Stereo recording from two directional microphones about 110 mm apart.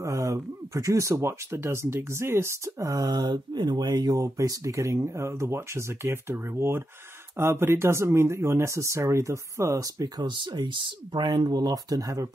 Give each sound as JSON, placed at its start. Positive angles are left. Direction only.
{"t": 0.0, "sound": "speech", "side_deg": -30}